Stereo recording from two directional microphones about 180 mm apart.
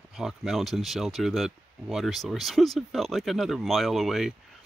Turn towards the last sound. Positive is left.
turn(degrees=0)  # may be behind; listen again after turning